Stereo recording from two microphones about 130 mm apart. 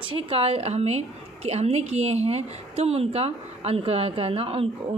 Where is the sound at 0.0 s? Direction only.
45° right (ahead or behind).